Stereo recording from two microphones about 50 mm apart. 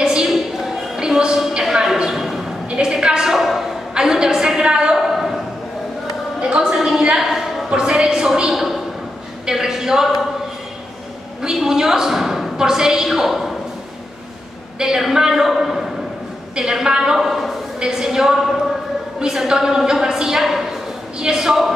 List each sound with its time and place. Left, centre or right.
0.0 s a sound: centre
2.7 s a woman's voice: centre
3.3 s a man's voice: centre
4.9 s a sound: centre
6.5 s a woman's voice: centre
7.7 s a woman's voice: centre
11.4 s a woman's voice: centre
14.8 s a woman's voice: centre
16.5 s a woman's voice: centre
17.7 s a woman's voice: centre